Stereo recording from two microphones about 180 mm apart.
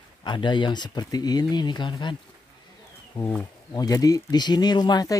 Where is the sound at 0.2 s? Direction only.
25° left (ahead or behind).